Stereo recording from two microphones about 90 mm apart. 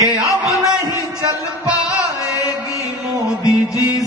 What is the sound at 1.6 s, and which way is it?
Music, 35° left (ahead or behind).